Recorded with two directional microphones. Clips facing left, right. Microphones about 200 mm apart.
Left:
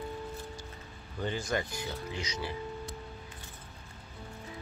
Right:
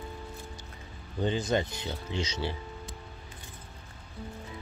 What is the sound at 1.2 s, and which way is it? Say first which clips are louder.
Speech: right 5 dB; 20° right (ahead or behind).